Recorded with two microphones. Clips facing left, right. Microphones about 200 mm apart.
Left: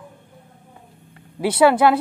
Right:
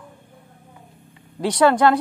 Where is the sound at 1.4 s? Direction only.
5° left (ahead or behind).